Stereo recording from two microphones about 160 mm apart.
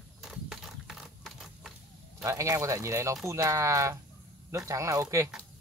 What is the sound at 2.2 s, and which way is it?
Speech, 20° right (ahead or behind).